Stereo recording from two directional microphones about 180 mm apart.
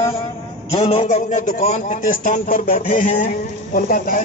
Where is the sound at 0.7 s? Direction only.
35° left (ahead or behind).